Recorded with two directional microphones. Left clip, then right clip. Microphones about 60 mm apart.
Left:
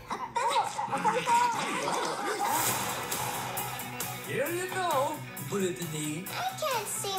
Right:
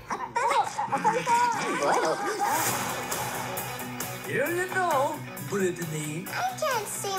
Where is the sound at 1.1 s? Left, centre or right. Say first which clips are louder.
Even; left.